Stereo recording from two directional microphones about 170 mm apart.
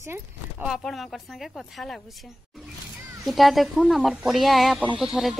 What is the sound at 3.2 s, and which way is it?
Speech, centre (ahead or behind).